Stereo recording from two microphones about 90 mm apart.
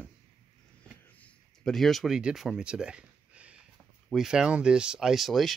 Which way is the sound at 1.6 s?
5° left (ahead or behind).